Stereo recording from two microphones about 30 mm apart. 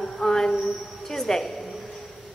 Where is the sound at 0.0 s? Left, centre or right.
Centre.